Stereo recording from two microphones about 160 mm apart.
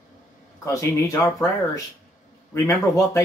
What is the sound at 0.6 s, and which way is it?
Speech, 20° left (ahead or behind).